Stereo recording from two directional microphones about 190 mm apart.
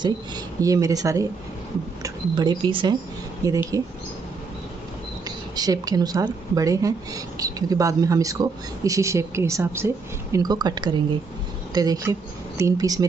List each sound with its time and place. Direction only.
0.6 s a woman's voice: 15° right (ahead or behind)
5.6 s a woman's voice: 20° right (ahead or behind)